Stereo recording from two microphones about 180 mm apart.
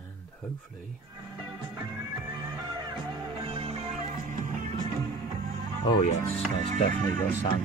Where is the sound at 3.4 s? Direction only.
35° right (ahead or behind).